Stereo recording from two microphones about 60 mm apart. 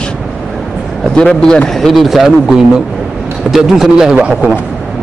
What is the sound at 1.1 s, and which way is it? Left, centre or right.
Speech, centre.